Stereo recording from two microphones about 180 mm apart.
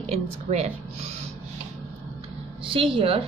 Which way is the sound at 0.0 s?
35° right (ahead or behind).